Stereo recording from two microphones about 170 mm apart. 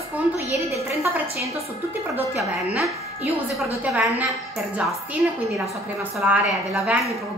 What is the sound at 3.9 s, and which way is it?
Speech, 10° right (ahead or behind).